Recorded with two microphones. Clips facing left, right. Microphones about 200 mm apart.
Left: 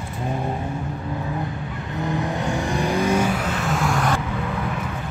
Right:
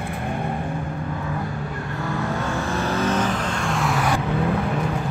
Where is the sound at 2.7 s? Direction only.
15° left (ahead or behind).